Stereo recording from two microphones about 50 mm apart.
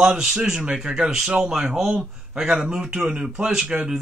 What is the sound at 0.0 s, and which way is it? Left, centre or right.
A man's voice, centre.